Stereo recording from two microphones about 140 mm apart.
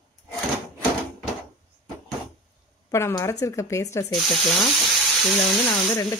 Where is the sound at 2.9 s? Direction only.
20° left (ahead or behind).